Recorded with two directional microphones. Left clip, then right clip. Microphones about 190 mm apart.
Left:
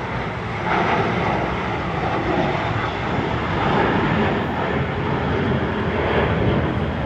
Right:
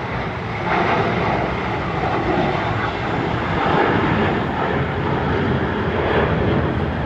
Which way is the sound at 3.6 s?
20° left (ahead or behind).